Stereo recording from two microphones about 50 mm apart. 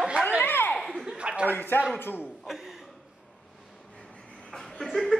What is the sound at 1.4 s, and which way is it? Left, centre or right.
Speech, left.